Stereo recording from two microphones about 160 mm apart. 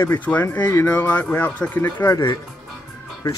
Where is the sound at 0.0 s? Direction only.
10° left (ahead or behind).